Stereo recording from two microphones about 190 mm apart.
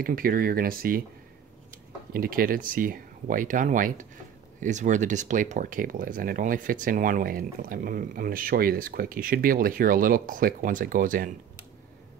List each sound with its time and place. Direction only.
0.0 s speech: 50° right (ahead or behind)
2.1 s speech: 50° right (ahead or behind)